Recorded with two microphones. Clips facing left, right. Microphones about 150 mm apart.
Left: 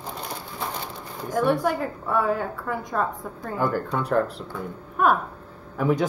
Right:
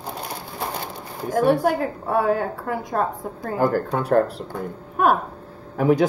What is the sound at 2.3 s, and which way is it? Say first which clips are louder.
Speech: right 3 dB; 35° right (ahead or behind).